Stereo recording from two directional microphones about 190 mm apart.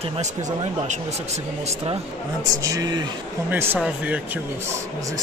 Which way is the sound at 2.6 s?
20° right (ahead or behind).